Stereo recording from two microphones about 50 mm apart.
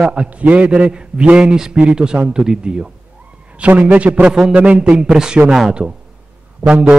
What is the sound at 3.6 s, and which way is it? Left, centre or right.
A man's voice, right.